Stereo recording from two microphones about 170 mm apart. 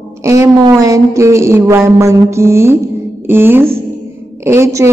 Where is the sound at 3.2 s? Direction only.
15° right (ahead or behind).